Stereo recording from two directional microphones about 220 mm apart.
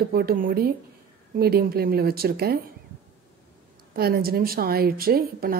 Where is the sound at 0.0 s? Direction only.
45° right (ahead or behind).